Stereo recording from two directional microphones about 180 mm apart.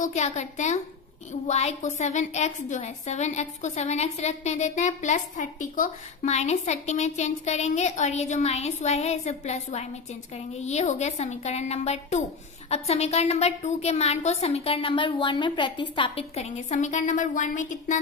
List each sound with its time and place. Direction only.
0.0 s a woman's voice: 40° left (ahead or behind)